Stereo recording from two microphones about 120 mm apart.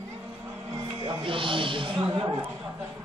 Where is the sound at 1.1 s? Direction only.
45° right (ahead or behind).